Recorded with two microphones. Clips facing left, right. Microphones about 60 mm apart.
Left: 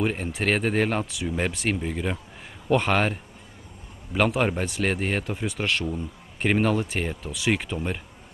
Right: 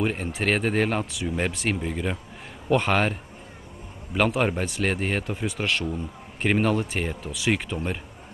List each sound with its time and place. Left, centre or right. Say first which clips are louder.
0.0 s speech: even; centre